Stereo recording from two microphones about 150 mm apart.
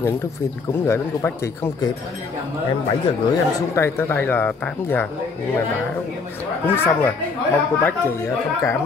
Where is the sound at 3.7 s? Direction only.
15° left (ahead or behind).